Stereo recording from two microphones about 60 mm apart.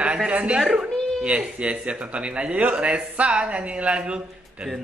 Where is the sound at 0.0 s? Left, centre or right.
Centre.